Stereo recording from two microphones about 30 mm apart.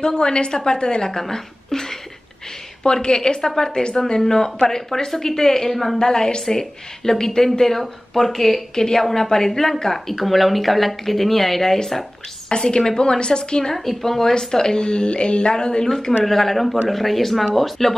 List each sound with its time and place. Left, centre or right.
0.0 s a woman's voice: left
1.3 s a sound: centre
2.8 s a woman's voice: left; by 5.9 s centre
5.9 s a woman's voice: left; by 8.6 s centre
8.7 s a woman's voice: left
10.2 s speech: centre
12.4 s a woman's voice: left
13.7 s speech: centre
14.4 s a woman's voice: centre
16.3 s speech: centre